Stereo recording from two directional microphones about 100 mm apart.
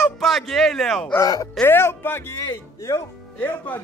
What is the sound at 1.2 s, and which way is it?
Speech, 40° left (ahead or behind).